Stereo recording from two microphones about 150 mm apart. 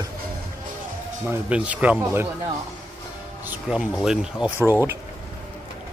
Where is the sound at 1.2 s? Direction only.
10° right (ahead or behind).